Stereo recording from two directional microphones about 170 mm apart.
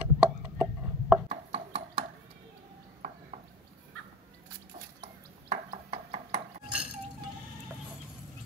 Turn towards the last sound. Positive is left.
turn(degrees=-5)  # may be behind; listen again after turning